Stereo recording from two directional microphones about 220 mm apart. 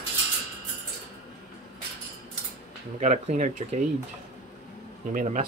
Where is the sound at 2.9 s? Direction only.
35° right (ahead or behind).